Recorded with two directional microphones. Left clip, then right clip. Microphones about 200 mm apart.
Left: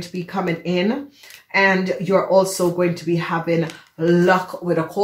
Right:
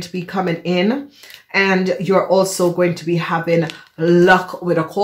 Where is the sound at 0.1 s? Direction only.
45° right (ahead or behind).